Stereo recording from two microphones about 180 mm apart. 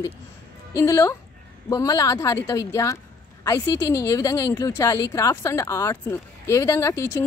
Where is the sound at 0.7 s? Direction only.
15° left (ahead or behind).